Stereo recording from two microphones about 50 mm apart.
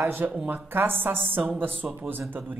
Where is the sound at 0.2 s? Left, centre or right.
Right.